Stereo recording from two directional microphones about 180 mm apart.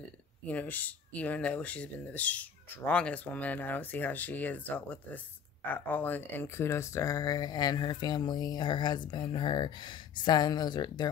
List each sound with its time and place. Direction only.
0.5 s speech: 10° left (ahead or behind)